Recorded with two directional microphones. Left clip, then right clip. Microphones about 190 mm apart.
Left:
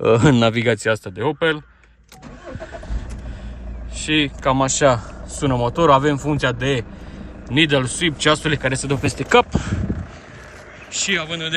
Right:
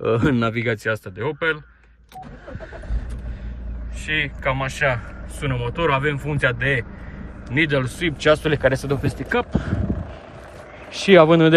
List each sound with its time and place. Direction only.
0.0 s speech: 10° left (ahead or behind)
4.0 s speech: 20° left (ahead or behind); by 9.8 s centre (ahead or behind)
10.9 s a man's voice: 20° right (ahead or behind)